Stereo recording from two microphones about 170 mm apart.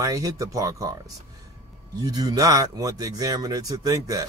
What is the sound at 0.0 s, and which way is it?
Speech, 20° right (ahead or behind).